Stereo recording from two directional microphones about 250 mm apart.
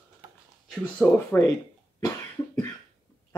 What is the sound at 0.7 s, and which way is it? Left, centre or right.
Speech, centre.